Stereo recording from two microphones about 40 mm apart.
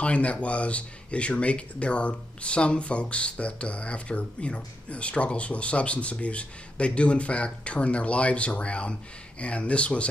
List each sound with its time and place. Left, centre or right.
0.0 s speech: left